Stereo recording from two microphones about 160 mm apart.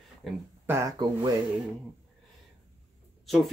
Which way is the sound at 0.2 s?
Centre (ahead or behind).